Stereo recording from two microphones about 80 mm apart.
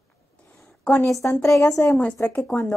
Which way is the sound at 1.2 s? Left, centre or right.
Left.